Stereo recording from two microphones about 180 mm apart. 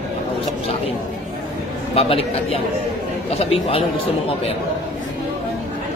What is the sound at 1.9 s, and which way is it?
A man's voice, 30° left (ahead or behind).